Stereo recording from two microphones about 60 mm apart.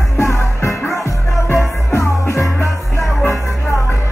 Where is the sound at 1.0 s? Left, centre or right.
Left.